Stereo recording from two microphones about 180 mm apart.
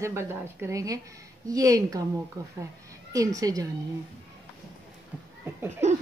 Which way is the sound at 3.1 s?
20° right (ahead or behind).